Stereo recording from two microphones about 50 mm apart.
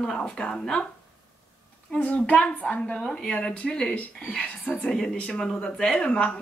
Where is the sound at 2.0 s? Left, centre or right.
Left.